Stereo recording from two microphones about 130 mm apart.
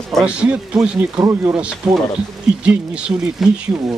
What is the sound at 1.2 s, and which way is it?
Speech, 20° right (ahead or behind).